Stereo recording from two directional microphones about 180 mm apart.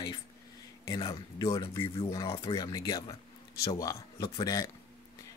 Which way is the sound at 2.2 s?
25° left (ahead or behind).